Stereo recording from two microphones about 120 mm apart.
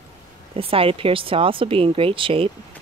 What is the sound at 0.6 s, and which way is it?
Speech, 50° right (ahead or behind).